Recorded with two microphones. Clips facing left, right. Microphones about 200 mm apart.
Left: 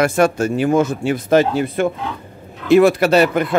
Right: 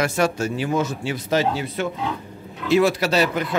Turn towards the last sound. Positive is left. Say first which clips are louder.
# left 7 dB
turn(degrees=55)  # may be behind; listen again after turning